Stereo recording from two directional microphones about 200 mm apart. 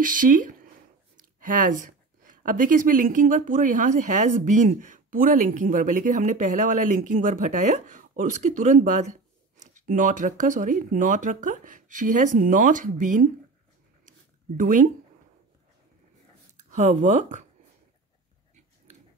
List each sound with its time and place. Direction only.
0.0 s a woman's voice: 40° right (ahead or behind)
14.6 s a woman's voice: 40° right (ahead or behind)
16.5 s speech: 35° right (ahead or behind)